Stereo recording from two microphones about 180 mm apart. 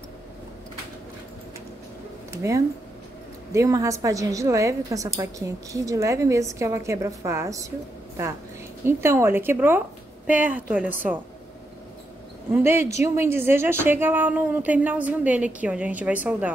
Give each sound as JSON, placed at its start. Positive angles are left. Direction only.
{"t": 2.3, "sound": "a woman's voice", "side_deg": -15}
{"t": 8.8, "sound": "a woman's voice", "side_deg": -15}
{"t": 12.5, "sound": "a woman's voice", "side_deg": -15}